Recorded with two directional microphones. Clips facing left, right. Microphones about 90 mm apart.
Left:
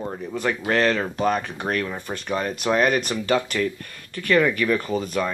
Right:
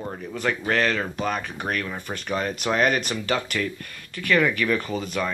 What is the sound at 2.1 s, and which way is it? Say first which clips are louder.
Speech: even; 10° left (ahead or behind).